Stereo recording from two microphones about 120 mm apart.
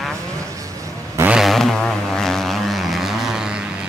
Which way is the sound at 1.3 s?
Centre (ahead or behind).